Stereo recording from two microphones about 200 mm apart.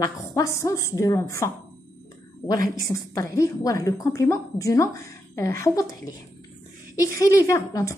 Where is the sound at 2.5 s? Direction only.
20° left (ahead or behind).